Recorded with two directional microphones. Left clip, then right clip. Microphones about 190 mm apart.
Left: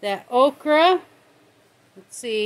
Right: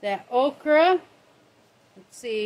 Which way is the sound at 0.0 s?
45° left (ahead or behind).